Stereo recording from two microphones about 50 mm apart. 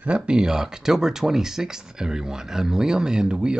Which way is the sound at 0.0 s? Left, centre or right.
Centre.